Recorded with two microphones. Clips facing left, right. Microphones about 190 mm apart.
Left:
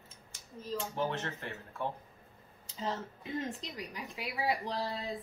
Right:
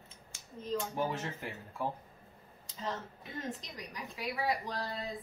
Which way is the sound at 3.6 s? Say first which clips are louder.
Left 3 dB; 30° left (ahead or behind).